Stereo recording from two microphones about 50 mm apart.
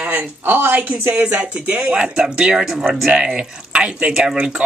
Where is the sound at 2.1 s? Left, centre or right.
Centre.